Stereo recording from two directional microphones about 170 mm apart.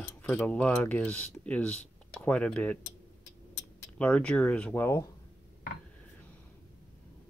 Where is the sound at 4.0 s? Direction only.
5° left (ahead or behind).